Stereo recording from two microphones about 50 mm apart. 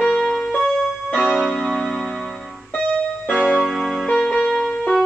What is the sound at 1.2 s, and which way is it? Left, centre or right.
Tick-tock, centre.